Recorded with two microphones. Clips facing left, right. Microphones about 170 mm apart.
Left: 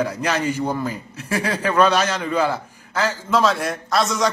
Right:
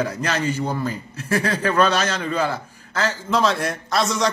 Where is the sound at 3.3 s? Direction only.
Centre (ahead or behind).